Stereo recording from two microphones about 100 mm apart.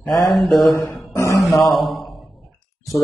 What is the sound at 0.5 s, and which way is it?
Speech, 35° left (ahead or behind).